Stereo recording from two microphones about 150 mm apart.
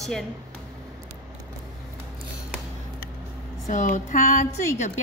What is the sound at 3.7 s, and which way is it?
Speech, 55° left (ahead or behind).